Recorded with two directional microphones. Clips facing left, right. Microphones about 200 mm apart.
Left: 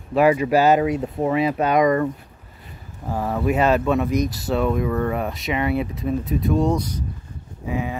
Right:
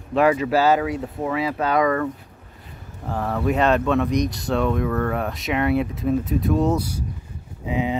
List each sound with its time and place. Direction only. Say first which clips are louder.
0.1 s speech: left 2 dB; 10° left (ahead or behind)
3.1 s speech: left 1 dB; 10° left (ahead or behind); by 7.1 s 10° right (ahead or behind)
7.6 s speech: right 3 dB; 20° right (ahead or behind)